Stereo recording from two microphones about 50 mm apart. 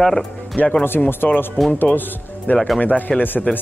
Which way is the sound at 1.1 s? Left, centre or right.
Left.